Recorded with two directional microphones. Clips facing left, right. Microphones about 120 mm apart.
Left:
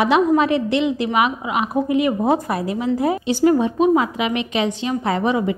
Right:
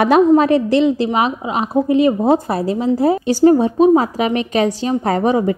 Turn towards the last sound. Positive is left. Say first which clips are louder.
# right 4 dB
turn(degrees=-40)  # may be behind; listen again after turning